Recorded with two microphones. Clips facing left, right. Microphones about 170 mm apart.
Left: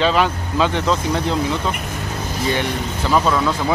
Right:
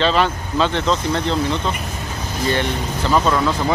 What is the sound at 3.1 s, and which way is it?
Speech, centre (ahead or behind).